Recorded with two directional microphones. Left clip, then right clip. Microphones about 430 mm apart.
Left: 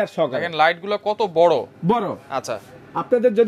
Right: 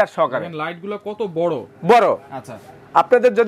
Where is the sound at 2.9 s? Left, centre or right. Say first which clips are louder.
Right 5 dB; right.